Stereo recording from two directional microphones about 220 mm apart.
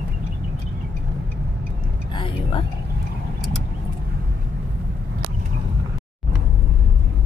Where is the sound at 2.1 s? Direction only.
25° left (ahead or behind).